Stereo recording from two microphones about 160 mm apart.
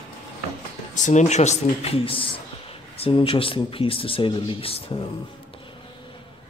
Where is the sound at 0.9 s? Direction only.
50° left (ahead or behind).